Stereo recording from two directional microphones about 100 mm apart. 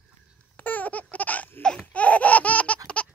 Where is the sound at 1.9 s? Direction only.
15° left (ahead or behind).